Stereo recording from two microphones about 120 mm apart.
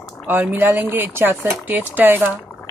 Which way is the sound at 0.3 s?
15° right (ahead or behind).